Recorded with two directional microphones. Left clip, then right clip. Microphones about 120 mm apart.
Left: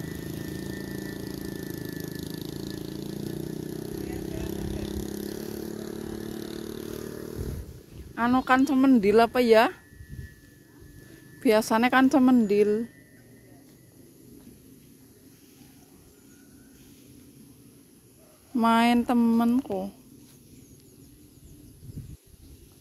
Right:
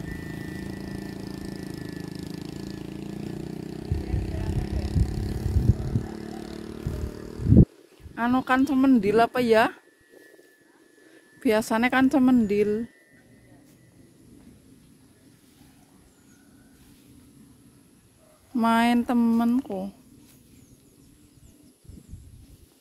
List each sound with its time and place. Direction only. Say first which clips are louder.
0.0 s vehicle: even; 15° left (ahead or behind)
1.4 s a sound: left 1 dB; 15° left (ahead or behind)
2.4 s vehicle: left 1 dB; 10° left (ahead or behind)
8.1 s speech: left 1 dB; 25° right (ahead or behind)
11.3 s speech: left 1 dB; 30° right (ahead or behind)
18.5 s a sound: even; 40° right (ahead or behind)
19.3 s speech: even; 35° right (ahead or behind)